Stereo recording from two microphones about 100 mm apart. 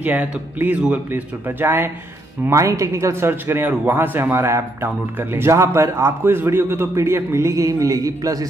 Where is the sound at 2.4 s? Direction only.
30° right (ahead or behind).